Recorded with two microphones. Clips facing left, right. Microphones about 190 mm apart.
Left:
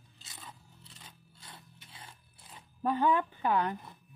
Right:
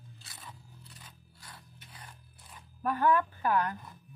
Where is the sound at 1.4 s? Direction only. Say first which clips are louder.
Even; 25° left (ahead or behind).